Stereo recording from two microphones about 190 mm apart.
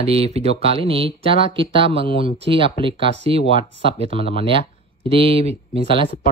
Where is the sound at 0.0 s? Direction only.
30° right (ahead or behind).